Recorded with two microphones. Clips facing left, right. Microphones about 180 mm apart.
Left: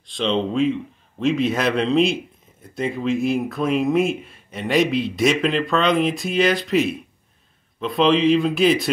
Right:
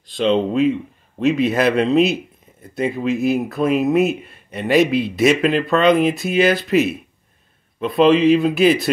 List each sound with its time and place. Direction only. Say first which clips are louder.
0.0 s speech: right 5 dB; 5° right (ahead or behind)